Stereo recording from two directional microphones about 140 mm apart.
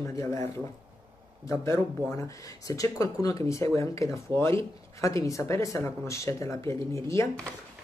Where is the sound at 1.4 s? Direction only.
20° left (ahead or behind).